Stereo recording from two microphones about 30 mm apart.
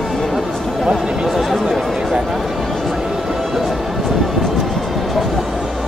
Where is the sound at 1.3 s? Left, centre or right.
Centre.